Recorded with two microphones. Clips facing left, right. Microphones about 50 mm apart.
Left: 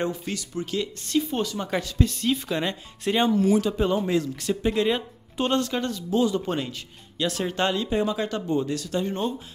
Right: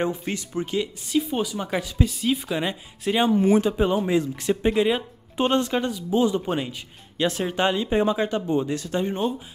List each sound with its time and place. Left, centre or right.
0.0 s speech: right
0.7 s speech: centre
3.3 s speech: right
7.2 s speech: right